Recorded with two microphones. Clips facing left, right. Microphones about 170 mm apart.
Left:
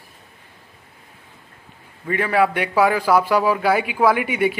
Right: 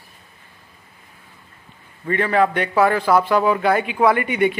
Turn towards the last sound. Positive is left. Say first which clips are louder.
# right 1 dB
turn(degrees=5)  # may be behind; listen again after turning